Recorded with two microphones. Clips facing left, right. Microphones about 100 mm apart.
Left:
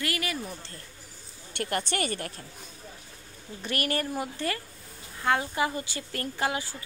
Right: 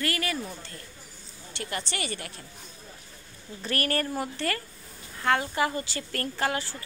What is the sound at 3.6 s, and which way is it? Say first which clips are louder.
A woman's voice: right 1 dB; 20° left (ahead or behind).